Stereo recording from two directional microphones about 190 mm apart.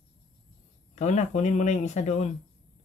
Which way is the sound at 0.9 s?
40° left (ahead or behind).